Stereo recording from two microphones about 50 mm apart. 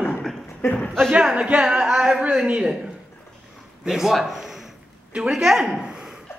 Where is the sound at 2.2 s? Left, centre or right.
Right.